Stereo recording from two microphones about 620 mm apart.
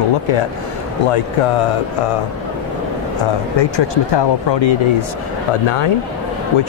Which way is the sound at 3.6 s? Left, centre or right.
Left.